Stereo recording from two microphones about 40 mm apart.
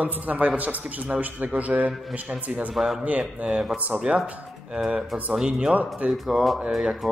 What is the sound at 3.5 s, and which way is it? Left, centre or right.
Speech, centre.